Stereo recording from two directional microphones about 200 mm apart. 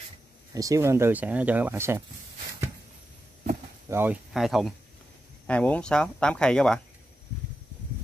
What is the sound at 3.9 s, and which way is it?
Speech, 10° right (ahead or behind).